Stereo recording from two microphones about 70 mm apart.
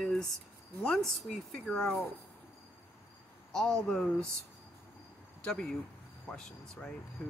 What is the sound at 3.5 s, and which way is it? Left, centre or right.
Speech, centre.